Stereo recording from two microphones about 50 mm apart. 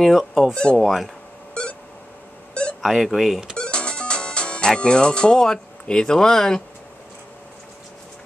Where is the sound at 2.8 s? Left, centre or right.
Centre.